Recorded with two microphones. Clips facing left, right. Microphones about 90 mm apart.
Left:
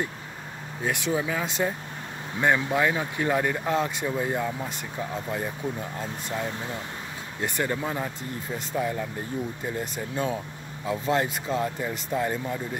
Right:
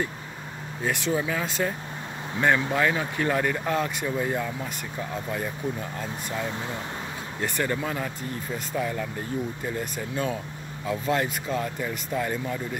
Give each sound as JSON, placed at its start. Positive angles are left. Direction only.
{"t": 0.8, "sound": "speech", "side_deg": 10}
{"t": 7.4, "sound": "speech", "side_deg": 20}